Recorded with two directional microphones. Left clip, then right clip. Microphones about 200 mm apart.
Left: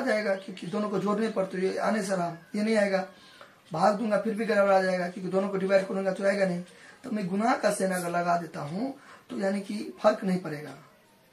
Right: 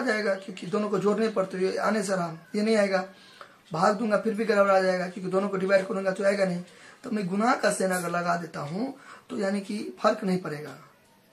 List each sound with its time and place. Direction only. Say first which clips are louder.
0.0 s speech: right 1 dB; 20° right (ahead or behind)